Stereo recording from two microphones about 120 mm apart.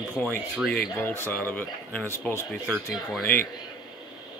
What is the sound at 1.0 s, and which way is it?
Speech, 20° left (ahead or behind).